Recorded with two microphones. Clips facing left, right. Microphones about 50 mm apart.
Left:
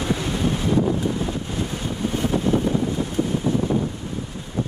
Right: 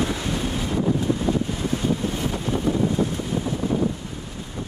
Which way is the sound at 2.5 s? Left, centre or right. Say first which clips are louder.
Left 5 dB; right.